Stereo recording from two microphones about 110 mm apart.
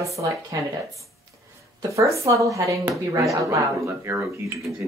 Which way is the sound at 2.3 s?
30° right (ahead or behind).